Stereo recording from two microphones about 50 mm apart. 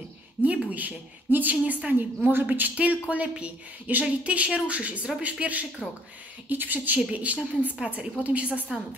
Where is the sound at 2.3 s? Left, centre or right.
Right.